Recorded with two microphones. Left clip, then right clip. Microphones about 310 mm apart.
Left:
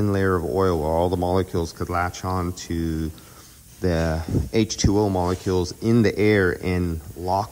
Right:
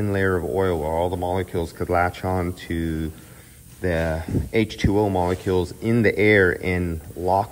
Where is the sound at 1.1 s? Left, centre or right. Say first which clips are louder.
Left 2 dB; centre.